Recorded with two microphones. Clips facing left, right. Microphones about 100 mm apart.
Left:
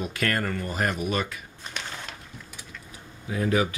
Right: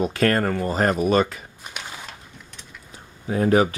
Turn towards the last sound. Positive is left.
turn(degrees=-40)  # may be behind; listen again after turning